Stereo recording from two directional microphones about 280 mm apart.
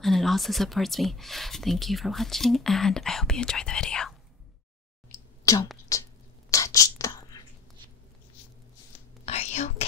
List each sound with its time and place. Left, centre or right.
0.0 s speech: centre
5.1 s clicking: centre
5.9 s speech: centre
6.5 s whispering: centre
9.2 s whispering: left